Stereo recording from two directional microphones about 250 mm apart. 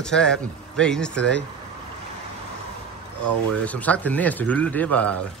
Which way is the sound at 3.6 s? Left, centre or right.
Centre.